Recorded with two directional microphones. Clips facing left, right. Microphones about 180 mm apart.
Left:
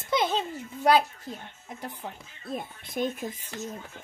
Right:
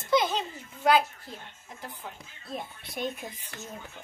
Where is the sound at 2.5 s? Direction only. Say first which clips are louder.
Left 3 dB; 50° left (ahead or behind).